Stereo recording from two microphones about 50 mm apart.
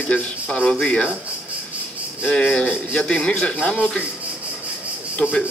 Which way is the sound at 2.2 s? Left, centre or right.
Centre.